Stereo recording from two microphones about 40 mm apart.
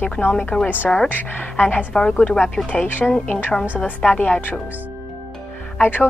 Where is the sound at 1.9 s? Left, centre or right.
Centre.